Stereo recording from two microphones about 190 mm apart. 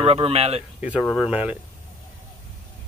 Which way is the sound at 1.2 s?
5° right (ahead or behind).